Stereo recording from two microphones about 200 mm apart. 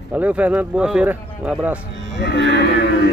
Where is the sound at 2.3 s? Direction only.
65° right (ahead or behind).